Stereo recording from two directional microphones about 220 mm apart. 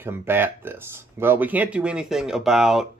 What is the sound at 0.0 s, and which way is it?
Speech, 10° right (ahead or behind).